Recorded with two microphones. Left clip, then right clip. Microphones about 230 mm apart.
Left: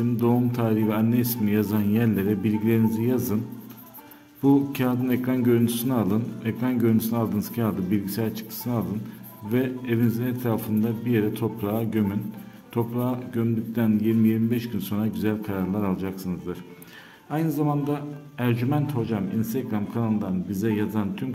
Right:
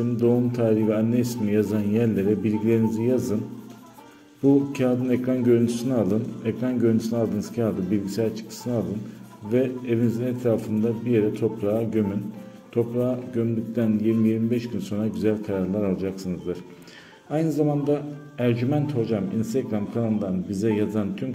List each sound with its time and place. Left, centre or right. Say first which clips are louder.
0.2 s a man's voice: right 4 dB; centre
4.7 s a man's voice: right 2 dB; centre
9.5 s a man's voice: right 3 dB; left
13.3 s a man's voice: right 1 dB; centre